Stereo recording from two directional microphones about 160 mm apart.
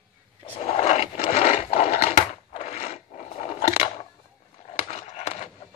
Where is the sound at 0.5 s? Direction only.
40° left (ahead or behind).